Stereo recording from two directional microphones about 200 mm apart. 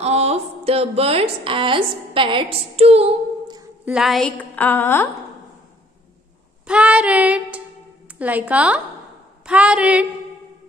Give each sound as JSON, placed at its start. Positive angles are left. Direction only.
{"t": 0.0, "sound": "a woman's voice", "side_deg": -30}
{"t": 3.8, "sound": "a woman's voice", "side_deg": -5}
{"t": 6.7, "sound": "child singing", "side_deg": -5}
{"t": 8.2, "sound": "a woman's voice", "side_deg": -5}
{"t": 9.5, "sound": "child singing", "side_deg": -5}